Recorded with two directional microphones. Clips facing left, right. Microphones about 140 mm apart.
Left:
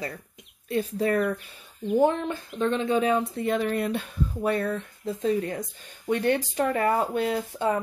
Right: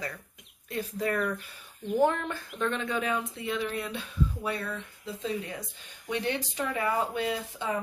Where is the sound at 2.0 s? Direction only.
20° left (ahead or behind).